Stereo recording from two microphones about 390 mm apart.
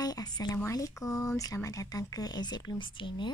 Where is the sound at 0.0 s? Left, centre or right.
Centre.